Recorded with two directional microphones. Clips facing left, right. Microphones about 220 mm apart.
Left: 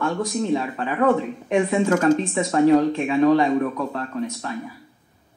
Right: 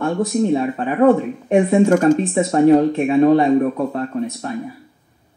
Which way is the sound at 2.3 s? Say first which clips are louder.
Right 4 dB; 30° right (ahead or behind).